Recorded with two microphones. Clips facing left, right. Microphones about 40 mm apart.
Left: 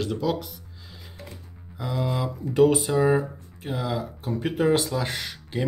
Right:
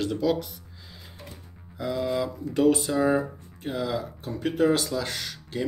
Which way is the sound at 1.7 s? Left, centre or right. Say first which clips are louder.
Right 1 dB; centre.